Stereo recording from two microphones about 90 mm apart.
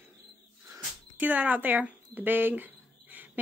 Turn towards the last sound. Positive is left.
turn(degrees=-20)  # may be behind; listen again after turning